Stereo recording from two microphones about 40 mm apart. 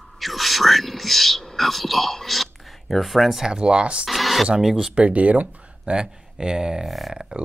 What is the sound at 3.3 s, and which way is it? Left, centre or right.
Speech, centre.